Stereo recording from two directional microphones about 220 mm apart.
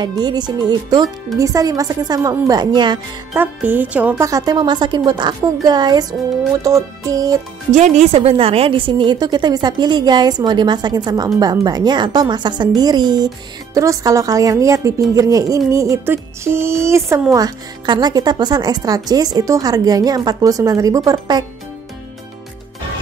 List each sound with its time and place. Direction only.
0.0 s a woman's voice: 20° right (ahead or behind)
3.3 s a woman's voice: 10° right (ahead or behind)
7.7 s a woman's voice: 30° right (ahead or behind)